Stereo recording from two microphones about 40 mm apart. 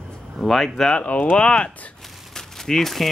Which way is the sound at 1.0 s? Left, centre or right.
Left.